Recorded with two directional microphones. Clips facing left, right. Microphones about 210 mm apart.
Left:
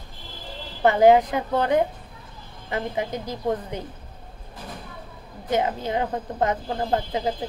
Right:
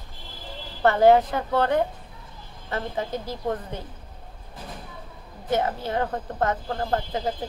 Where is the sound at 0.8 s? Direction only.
15° left (ahead or behind).